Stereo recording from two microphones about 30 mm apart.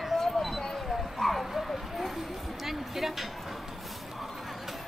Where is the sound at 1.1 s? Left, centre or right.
Centre.